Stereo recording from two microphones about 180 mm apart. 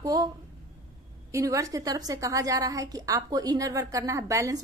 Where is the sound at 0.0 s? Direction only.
20° right (ahead or behind).